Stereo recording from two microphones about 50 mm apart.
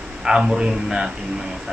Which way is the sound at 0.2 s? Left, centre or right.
Centre.